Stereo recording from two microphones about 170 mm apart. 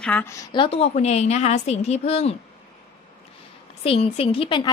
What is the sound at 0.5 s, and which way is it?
A woman's voice, 35° left (ahead or behind).